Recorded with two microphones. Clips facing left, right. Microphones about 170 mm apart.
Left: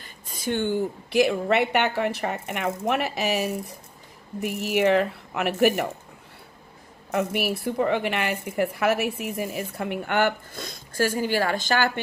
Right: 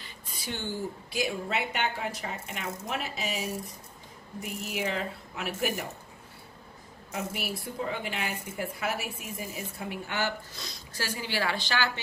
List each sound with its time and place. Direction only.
0.0 s a woman's voice: 50° left (ahead or behind); by 5.9 s 65° left (ahead or behind)
7.1 s a woman's voice: 65° left (ahead or behind); by 12.0 s 50° left (ahead or behind)